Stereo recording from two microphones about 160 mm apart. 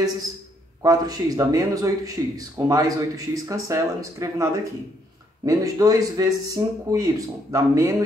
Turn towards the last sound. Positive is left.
turn(degrees=-20)  # may be behind; listen again after turning